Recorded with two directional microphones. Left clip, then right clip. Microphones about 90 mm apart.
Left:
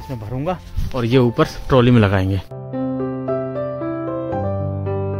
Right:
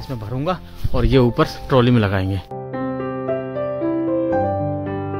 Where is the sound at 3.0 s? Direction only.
Centre (ahead or behind).